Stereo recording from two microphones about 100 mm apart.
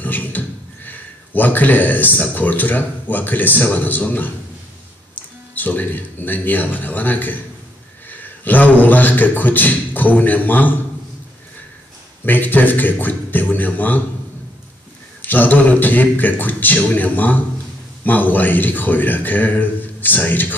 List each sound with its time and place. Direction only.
0.0 s a man's voice: 20° left (ahead or behind)
12.3 s a man's voice: 20° left (ahead or behind)
15.2 s a man's voice: 15° left (ahead or behind)